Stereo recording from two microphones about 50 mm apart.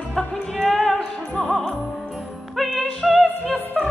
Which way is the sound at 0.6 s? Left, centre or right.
Centre.